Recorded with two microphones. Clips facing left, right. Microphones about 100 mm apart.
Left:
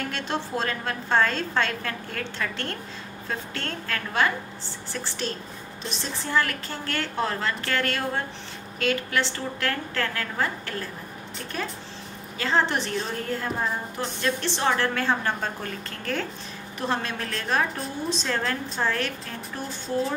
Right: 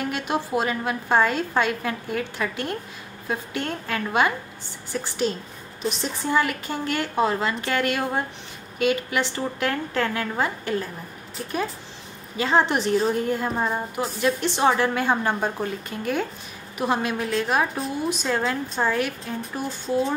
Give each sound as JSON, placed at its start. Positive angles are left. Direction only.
{"t": 0.0, "sound": "a woman's voice", "side_deg": -10}
{"t": 12.4, "sound": "a woman's voice", "side_deg": -15}